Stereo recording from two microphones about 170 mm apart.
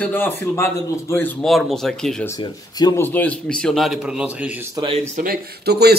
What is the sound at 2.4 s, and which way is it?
Speech, 25° left (ahead or behind).